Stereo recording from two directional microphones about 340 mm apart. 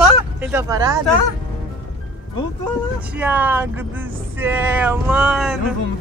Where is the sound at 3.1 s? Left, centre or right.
Centre.